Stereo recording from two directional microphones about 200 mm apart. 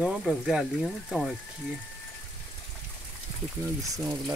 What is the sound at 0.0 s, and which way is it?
Speech, centre (ahead or behind).